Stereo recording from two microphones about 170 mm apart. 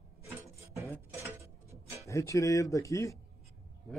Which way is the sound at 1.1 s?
15° right (ahead or behind).